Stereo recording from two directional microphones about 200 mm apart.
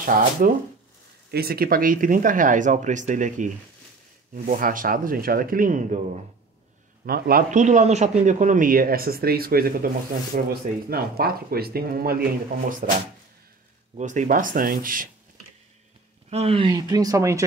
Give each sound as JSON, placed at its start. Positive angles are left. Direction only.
{"t": 0.0, "sound": "a man's voice", "side_deg": -40}
{"t": 13.9, "sound": "a man's voice", "side_deg": -40}
{"t": 16.3, "sound": "speech", "side_deg": -30}